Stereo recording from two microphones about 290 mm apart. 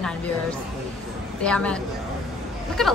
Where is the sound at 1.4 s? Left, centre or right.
Centre.